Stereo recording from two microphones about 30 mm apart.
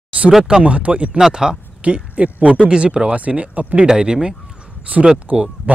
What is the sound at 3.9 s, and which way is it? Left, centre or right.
Speech, right.